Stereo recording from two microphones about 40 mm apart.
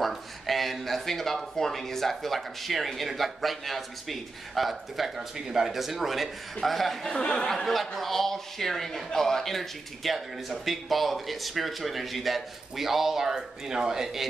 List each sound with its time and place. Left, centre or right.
0.0 s speech: centre
7.1 s speech: left
7.6 s speech: centre